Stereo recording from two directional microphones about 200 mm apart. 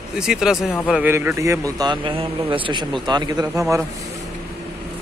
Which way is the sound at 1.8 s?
25° right (ahead or behind).